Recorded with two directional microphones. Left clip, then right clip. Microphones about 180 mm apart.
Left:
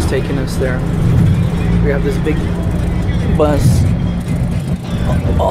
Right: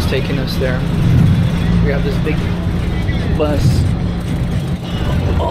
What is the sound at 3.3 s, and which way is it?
Speech, 20° left (ahead or behind).